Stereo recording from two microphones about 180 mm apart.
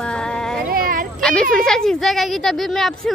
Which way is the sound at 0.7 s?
55° right (ahead or behind).